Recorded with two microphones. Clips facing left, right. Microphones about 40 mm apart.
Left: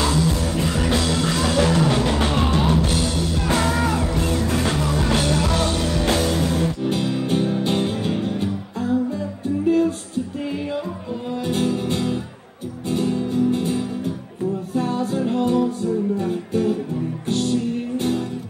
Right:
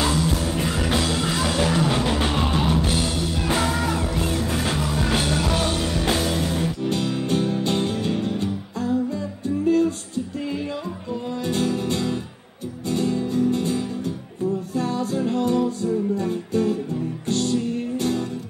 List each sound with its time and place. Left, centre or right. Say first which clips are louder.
0.0 s music: left 2 dB; centre
7.2 s music: left 1 dB; centre
11.4 s music: left 1 dB; centre